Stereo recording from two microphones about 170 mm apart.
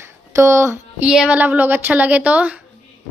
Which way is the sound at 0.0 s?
15° right (ahead or behind).